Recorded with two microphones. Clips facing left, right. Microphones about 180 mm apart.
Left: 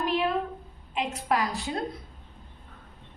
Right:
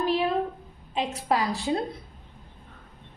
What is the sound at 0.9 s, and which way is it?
Speech, 30° right (ahead or behind).